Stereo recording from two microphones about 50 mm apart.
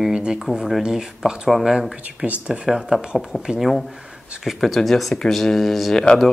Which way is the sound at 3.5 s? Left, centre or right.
Centre.